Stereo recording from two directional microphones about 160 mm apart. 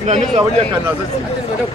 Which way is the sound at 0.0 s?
45° right (ahead or behind).